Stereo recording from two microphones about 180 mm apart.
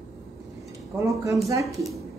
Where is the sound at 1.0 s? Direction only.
15° right (ahead or behind).